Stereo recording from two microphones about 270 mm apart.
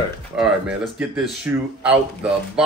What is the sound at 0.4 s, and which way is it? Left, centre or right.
Speech, centre.